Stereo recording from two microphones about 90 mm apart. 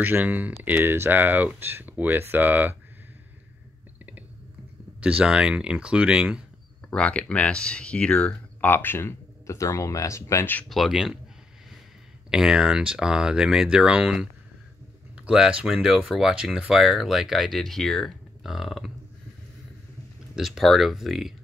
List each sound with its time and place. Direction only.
0.0 s speech: 20° right (ahead or behind)
5.0 s speech: 10° right (ahead or behind)
6.9 s speech: 15° left (ahead or behind); by 10.4 s 35° left (ahead or behind)
10.7 s speech: 5° right (ahead or behind)
12.3 s speech: 5° right (ahead or behind)
15.2 s speech: 10° right (ahead or behind)
20.3 s speech: 5° right (ahead or behind)